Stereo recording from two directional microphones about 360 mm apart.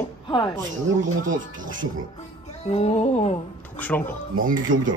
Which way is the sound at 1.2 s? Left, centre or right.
Right.